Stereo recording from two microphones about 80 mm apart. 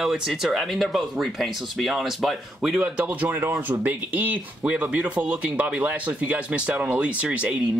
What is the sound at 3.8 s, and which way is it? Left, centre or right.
Speech, right.